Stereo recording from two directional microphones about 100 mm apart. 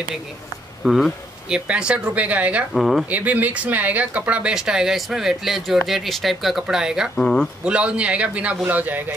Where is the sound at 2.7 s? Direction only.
Centre (ahead or behind).